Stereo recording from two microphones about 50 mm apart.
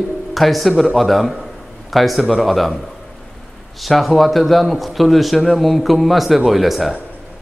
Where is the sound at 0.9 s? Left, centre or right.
Centre.